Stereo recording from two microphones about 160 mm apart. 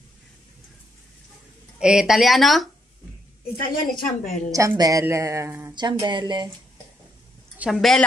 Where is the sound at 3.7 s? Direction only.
55° left (ahead or behind).